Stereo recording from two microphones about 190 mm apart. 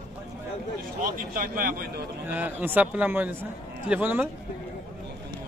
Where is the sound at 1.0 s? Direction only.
45° right (ahead or behind).